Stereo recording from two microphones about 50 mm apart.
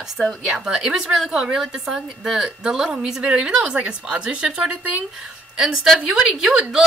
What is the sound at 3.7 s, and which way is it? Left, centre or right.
Speech, right.